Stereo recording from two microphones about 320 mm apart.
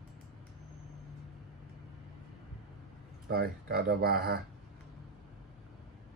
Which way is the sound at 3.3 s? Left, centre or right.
Right.